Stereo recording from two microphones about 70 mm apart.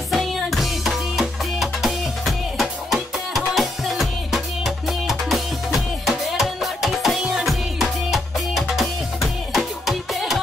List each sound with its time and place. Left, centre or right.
0.1 s music: centre